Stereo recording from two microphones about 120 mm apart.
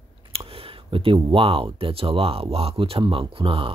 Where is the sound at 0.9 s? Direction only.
45° right (ahead or behind).